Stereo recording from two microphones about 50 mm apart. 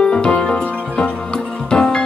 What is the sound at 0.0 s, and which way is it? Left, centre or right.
Music, left.